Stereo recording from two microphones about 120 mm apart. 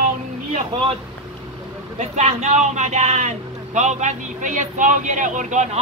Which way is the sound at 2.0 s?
70° right (ahead or behind).